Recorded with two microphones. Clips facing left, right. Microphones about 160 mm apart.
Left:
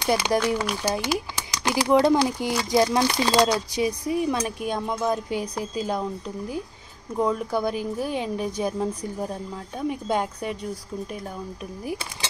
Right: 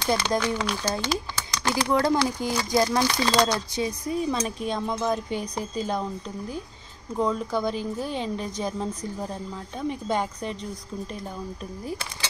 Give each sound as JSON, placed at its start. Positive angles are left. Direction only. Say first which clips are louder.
{"t": 0.0, "sound": "speech", "louder": "left 2 dB", "side_deg": 10}
{"t": 3.3, "sound": "speech", "louder": "left 2 dB", "side_deg": 5}